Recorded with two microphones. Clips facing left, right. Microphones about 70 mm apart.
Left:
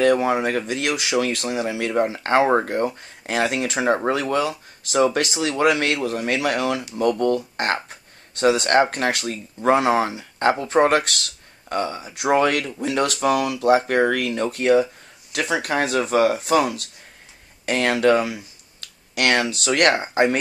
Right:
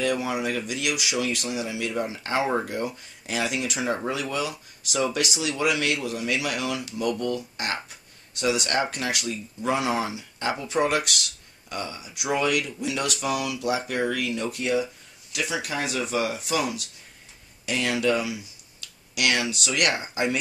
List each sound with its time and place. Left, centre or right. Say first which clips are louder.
0.0 s speech: left 8 dB; left